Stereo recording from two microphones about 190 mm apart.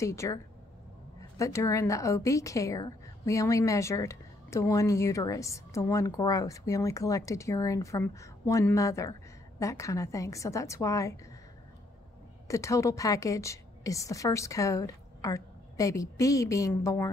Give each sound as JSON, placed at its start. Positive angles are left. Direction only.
{"t": 0.0, "sound": "a woman's voice", "side_deg": 15}
{"t": 1.4, "sound": "a woman's voice", "side_deg": 15}
{"t": 12.4, "sound": "a woman's voice", "side_deg": 15}